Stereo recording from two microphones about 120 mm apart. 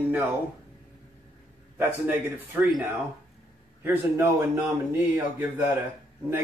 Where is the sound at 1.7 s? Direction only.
15° right (ahead or behind).